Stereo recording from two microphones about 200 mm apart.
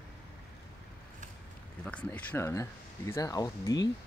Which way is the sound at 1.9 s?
5° left (ahead or behind).